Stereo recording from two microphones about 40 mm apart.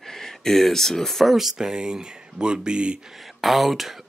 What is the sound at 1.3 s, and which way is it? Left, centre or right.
Speech, centre.